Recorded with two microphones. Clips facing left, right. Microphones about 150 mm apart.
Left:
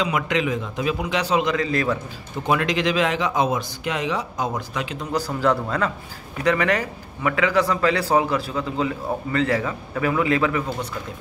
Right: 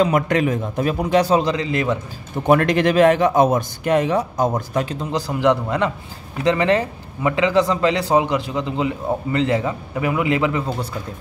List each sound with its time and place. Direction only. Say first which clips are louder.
0.0 s a man's voice: right 5 dB; 50° right (ahead or behind); by 2.0 s 20° right (ahead or behind)
2.4 s a man's voice: right 6 dB; 50° right (ahead or behind)
5.1 s a man's voice: right 3 dB; 20° right (ahead or behind)